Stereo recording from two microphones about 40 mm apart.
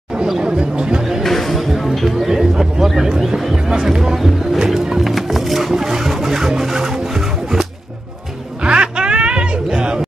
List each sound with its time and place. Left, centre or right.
0.4 s chatter: right
1.2 s music: centre
2.3 s a sound: centre
4.0 s music: centre
8.6 s music: right